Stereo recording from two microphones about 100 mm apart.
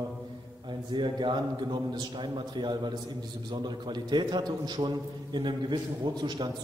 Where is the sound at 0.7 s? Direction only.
50° right (ahead or behind).